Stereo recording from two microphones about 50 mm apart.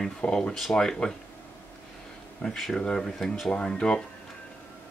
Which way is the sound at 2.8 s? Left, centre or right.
Centre.